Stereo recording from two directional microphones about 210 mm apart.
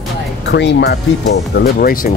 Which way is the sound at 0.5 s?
55° left (ahead or behind).